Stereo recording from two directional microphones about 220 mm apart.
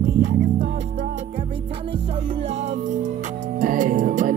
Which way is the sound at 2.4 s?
30° right (ahead or behind).